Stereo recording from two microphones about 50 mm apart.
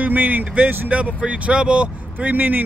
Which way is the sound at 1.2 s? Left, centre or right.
Right.